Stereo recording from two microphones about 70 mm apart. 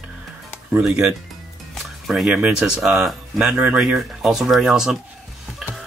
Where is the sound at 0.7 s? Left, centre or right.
Centre.